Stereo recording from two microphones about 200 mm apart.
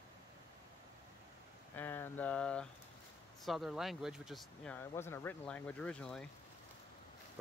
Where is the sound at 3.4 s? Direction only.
Centre (ahead or behind).